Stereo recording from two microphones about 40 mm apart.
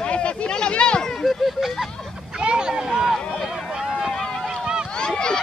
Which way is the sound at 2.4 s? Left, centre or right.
Right.